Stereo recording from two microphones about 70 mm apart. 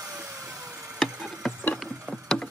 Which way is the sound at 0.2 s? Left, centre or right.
Right.